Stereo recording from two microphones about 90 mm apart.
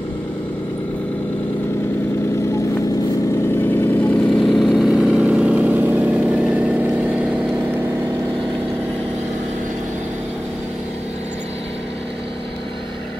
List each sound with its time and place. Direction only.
3.5 s vehicle: 25° left (ahead or behind)
4.4 s vehicle: 5° left (ahead or behind); by 7.1 s 15° right (ahead or behind)